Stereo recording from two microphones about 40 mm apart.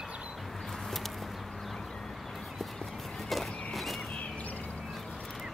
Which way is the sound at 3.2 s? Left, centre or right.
Centre.